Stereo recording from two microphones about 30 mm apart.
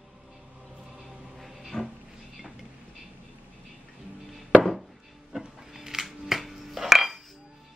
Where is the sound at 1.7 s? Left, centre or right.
Left.